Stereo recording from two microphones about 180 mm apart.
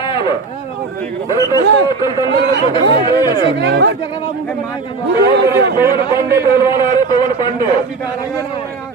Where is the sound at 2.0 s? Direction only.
25° left (ahead or behind).